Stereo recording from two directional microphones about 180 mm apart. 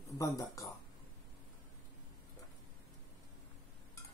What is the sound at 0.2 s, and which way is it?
Speech, 20° left (ahead or behind).